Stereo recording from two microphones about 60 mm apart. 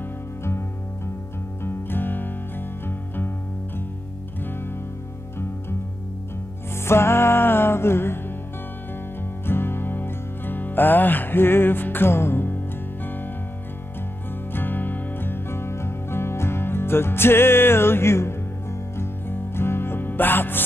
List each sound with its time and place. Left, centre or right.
1.6 s music: left
6.8 s music: left
9.5 s music: left
14.5 s music: left